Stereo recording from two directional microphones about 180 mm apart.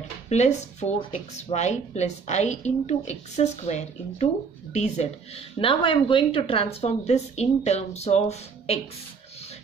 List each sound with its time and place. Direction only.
0.3 s speech: 40° left (ahead or behind)